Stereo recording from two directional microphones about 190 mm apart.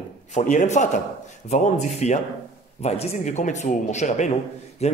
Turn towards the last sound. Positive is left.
turn(degrees=35)  # may be behind; listen again after turning